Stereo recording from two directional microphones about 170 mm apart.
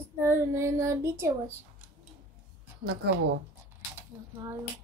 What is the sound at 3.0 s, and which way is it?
Speech, 75° right (ahead or behind).